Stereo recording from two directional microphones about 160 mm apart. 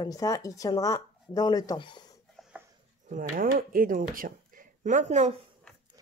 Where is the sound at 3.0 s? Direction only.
55° right (ahead or behind).